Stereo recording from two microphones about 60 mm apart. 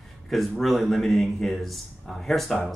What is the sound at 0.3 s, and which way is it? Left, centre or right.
Speech, centre.